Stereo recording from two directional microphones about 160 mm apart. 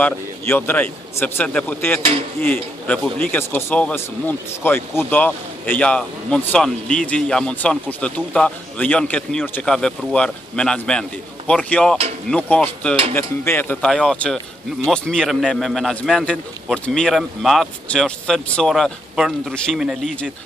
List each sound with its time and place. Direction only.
0.0 s speech: 10° left (ahead or behind)